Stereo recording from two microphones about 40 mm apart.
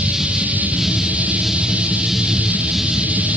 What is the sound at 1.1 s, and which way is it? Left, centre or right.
Music, right.